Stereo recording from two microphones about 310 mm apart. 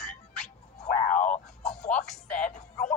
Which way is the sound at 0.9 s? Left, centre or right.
Left.